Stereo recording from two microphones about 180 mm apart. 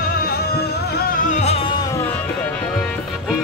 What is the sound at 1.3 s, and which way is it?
Music, 40° left (ahead or behind).